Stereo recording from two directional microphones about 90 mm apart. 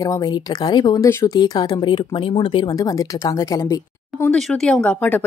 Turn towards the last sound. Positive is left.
turn(degrees=20)  # may be behind; listen again after turning